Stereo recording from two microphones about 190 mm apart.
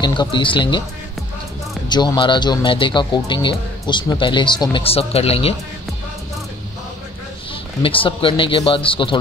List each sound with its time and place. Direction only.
0.0 s speech: 25° left (ahead or behind)
1.9 s speech: 25° left (ahead or behind)
7.8 s speech: 30° left (ahead or behind)